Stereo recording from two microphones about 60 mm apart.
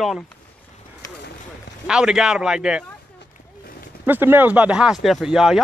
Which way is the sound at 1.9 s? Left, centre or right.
Centre.